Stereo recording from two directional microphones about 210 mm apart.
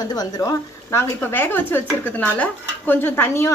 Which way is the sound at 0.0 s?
20° left (ahead or behind).